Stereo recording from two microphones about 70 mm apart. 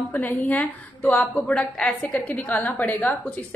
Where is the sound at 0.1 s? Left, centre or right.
Left.